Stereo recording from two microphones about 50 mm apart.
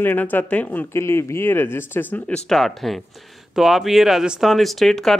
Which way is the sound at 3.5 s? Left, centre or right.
Centre.